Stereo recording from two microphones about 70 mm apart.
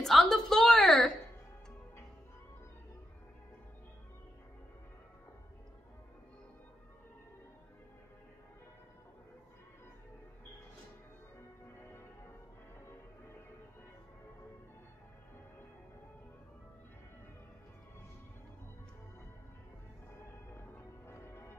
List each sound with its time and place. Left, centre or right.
0.0 s a sound: centre
11.8 s music: left
20.5 s change ringing: left